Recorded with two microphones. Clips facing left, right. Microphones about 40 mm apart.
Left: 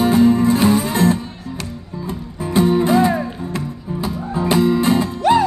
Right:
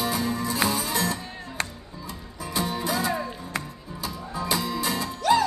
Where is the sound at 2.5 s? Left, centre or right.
Left.